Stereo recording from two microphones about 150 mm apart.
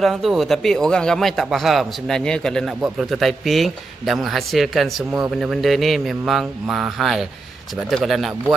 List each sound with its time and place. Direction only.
0.0 s a man's voice: centre (ahead or behind)